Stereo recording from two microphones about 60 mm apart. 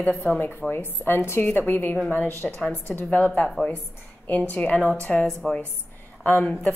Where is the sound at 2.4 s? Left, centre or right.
Centre.